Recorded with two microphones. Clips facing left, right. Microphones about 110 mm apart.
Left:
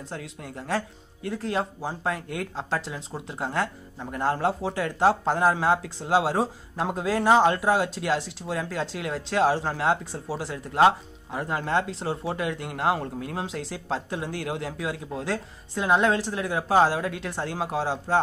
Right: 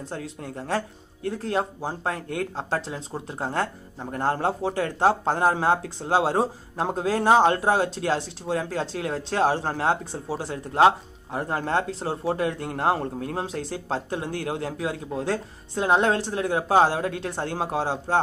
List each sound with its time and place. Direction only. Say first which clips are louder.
0.1 s speech: right 2 dB; 35° right (ahead or behind)
4.4 s speech: right 1 dB; 30° right (ahead or behind)
9.8 s speech: even; 30° right (ahead or behind)